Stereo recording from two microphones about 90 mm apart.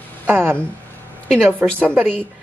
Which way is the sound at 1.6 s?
20° right (ahead or behind).